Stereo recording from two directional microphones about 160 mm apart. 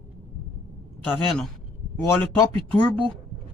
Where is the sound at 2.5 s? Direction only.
35° right (ahead or behind).